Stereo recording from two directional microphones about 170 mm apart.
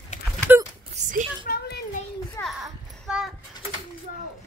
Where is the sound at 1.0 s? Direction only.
40° right (ahead or behind).